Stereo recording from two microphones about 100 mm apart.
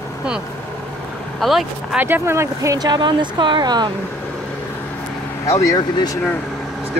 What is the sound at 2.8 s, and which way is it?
Speech, 45° right (ahead or behind).